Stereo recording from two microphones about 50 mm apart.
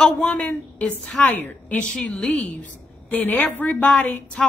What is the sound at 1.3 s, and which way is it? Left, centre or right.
A woman's voice, left.